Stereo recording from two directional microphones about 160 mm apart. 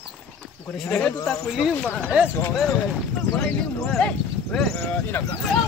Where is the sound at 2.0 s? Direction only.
10° right (ahead or behind).